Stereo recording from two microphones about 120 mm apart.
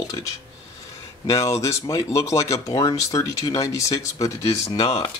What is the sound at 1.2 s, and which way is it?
Speech, 25° left (ahead or behind).